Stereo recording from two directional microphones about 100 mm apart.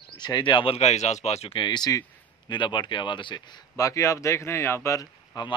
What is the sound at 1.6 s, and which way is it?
Speech, 45° left (ahead or behind).